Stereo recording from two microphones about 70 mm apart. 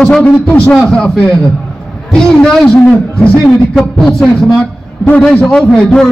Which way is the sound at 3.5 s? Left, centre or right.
Centre.